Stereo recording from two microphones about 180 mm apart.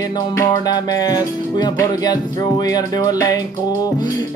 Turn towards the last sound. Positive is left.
turn(degrees=20)  # may be behind; listen again after turning